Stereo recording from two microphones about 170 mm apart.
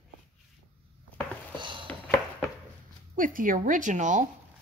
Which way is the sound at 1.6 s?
30° right (ahead or behind).